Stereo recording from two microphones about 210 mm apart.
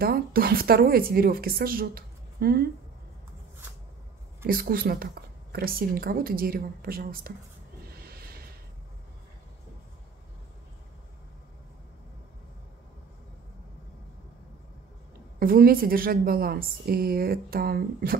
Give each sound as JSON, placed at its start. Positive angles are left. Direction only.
{"t": 0.0, "sound": "speech", "side_deg": -45}
{"t": 4.5, "sound": "speech", "side_deg": -45}
{"t": 8.0, "sound": "a sound", "side_deg": -45}
{"t": 15.3, "sound": "speech", "side_deg": -45}